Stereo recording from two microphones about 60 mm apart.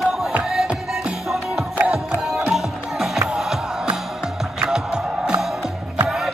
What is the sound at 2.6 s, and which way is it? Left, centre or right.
Music, centre.